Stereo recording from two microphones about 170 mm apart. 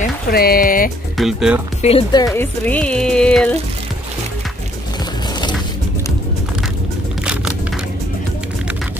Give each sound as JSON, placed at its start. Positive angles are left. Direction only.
{"t": 0.0, "sound": "speech", "side_deg": 65}
{"t": 1.1, "sound": "speech", "side_deg": 0}
{"t": 1.8, "sound": "speech", "side_deg": 35}
{"t": 2.1, "sound": "speech", "side_deg": 15}